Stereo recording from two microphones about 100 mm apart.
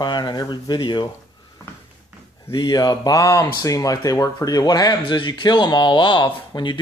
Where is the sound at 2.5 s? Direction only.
50° left (ahead or behind).